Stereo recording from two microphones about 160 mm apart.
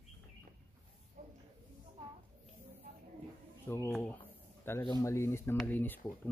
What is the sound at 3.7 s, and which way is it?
Speech, 10° left (ahead or behind).